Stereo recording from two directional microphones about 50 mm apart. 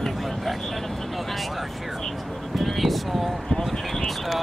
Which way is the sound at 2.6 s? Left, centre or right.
Centre.